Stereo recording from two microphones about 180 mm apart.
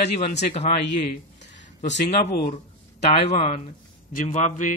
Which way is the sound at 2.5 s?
35° left (ahead or behind).